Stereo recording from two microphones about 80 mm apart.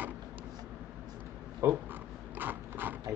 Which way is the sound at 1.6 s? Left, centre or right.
Right.